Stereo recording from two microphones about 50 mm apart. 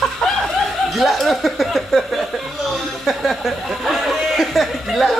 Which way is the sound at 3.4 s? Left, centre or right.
Centre.